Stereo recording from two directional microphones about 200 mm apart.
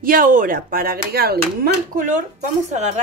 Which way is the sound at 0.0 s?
45° right (ahead or behind).